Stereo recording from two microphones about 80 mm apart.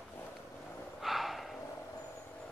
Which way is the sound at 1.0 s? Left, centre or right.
Centre.